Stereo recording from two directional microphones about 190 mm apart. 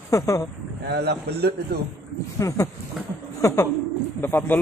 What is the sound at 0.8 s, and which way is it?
Speech, 60° right (ahead or behind).